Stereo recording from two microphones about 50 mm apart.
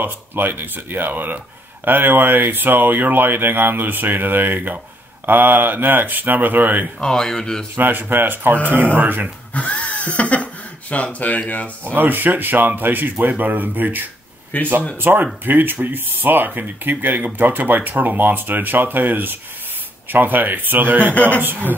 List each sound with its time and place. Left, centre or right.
0.0 s speech: right
7.0 s speech: centre
7.7 s speech: right
9.5 s speech: left
11.8 s speech: right
14.5 s speech: left
15.0 s speech: right
21.1 s a man's voice: left
21.4 s speech: right